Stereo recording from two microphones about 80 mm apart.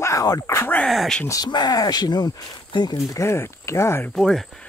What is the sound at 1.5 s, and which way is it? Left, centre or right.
Speech, left.